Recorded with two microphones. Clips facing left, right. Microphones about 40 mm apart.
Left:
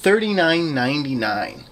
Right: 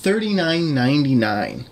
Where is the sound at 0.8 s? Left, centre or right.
Centre.